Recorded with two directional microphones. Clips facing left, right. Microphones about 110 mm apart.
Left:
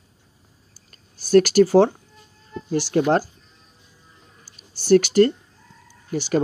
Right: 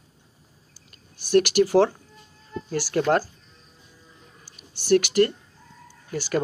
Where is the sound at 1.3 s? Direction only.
35° left (ahead or behind); by 3.3 s 20° left (ahead or behind).